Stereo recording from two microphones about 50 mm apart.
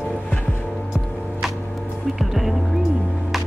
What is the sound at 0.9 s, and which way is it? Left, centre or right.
Music, centre.